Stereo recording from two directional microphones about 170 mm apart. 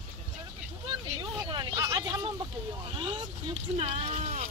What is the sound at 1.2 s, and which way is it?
Vehicle, 25° right (ahead or behind).